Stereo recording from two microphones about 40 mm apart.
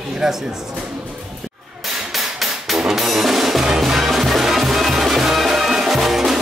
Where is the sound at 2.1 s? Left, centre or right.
Centre.